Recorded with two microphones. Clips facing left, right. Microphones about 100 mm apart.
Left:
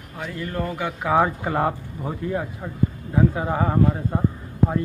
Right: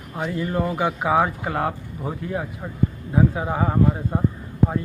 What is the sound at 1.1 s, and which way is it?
Speech, centre (ahead or behind).